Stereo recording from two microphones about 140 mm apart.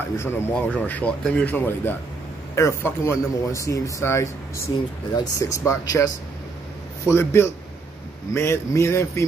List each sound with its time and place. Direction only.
0.2 s speech: 15° left (ahead or behind)